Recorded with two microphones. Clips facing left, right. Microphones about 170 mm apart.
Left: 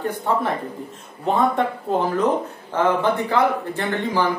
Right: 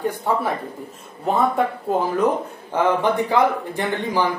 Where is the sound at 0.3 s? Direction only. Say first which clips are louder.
Even; 10° right (ahead or behind).